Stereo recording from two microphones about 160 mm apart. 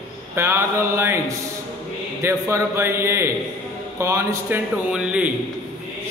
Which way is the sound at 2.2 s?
15° right (ahead or behind).